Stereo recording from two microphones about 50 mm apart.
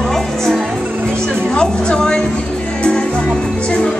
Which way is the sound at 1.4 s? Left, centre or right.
Centre.